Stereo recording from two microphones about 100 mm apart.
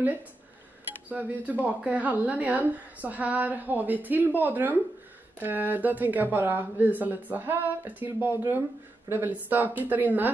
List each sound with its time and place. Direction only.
1.0 s speech: 15° right (ahead or behind)